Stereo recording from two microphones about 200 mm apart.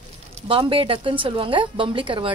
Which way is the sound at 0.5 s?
25° right (ahead or behind).